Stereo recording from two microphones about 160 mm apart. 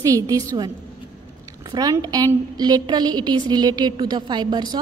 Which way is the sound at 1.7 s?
25° right (ahead or behind).